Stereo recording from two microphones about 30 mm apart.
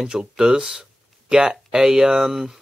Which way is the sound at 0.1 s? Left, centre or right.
Right.